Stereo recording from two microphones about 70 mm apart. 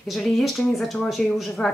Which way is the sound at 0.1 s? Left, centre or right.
Centre.